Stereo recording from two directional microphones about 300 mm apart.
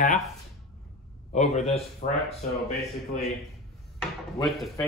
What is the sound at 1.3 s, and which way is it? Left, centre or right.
Speech, left.